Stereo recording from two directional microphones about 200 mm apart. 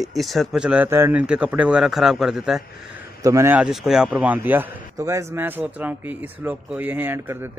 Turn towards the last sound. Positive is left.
turn(degrees=-10)  # may be behind; listen again after turning